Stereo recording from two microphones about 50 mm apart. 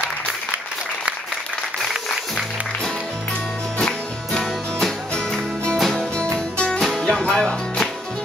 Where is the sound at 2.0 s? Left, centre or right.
Centre.